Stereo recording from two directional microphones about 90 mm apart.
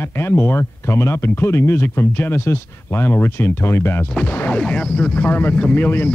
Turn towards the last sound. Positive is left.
turn(degrees=20)  # may be behind; listen again after turning